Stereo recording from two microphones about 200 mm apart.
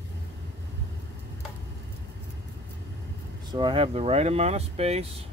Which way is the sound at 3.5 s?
25° right (ahead or behind).